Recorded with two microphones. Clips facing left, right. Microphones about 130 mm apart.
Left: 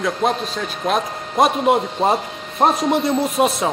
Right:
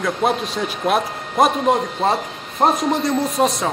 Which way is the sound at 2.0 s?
10° left (ahead or behind).